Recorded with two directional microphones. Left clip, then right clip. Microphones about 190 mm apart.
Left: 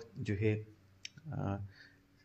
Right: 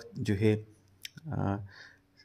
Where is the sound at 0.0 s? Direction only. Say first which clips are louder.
Right 6 dB; 55° right (ahead or behind).